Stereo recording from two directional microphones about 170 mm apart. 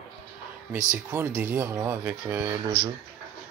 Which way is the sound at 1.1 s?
15° right (ahead or behind).